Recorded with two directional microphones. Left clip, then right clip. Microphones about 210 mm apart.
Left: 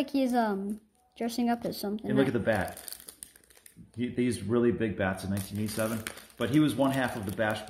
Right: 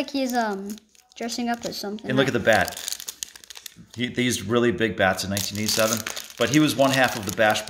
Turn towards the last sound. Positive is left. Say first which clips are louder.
# right 10 dB
turn(degrees=-55)  # may be behind; listen again after turning